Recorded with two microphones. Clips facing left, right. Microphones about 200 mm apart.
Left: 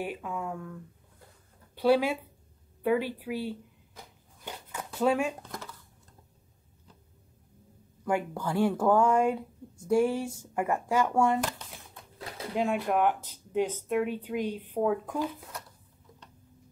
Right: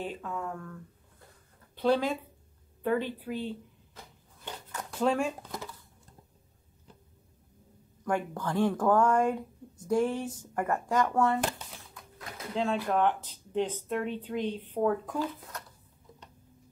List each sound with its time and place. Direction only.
0.0 s speech: 10° left (ahead or behind)
1.8 s speech: 10° left (ahead or behind)
4.7 s a sound: 5° left (ahead or behind)
8.0 s speech: 10° left (ahead or behind)
11.9 s typewriter: 30° left (ahead or behind)
12.5 s speech: 15° left (ahead or behind)